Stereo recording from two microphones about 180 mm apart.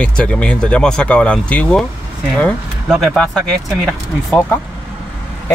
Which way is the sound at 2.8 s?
Centre (ahead or behind).